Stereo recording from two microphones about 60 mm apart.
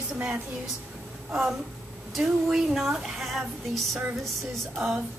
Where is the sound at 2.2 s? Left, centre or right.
Centre.